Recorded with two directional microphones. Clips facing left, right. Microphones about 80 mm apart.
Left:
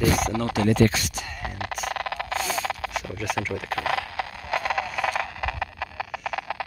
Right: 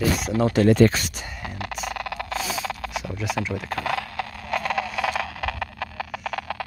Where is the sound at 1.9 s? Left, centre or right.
Left.